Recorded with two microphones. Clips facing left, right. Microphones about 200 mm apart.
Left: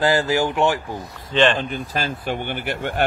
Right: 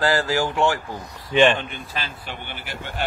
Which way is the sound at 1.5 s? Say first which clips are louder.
Left 6 dB; 40° left (ahead or behind).